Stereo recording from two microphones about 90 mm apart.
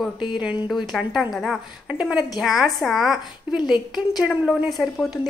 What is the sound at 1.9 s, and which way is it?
A woman's voice, 10° right (ahead or behind).